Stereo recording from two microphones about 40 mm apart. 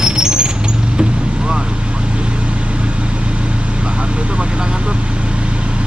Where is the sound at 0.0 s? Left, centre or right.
Centre.